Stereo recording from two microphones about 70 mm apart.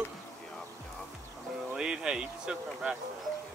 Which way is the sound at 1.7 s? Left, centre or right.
Centre.